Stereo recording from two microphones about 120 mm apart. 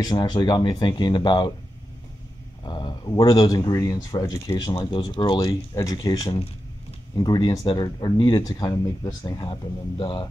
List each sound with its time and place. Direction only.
0.0 s speech: 30° left (ahead or behind)
2.6 s speech: 40° left (ahead or behind)
4.7 s speech: 40° left (ahead or behind)
5.5 s speech: 30° left (ahead or behind)
9.5 s speech: 40° left (ahead or behind)